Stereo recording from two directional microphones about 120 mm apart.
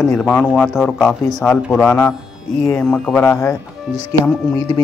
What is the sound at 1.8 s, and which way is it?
Speech, 15° left (ahead or behind).